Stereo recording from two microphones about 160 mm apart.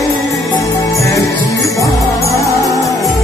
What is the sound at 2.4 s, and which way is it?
Music, 20° left (ahead or behind).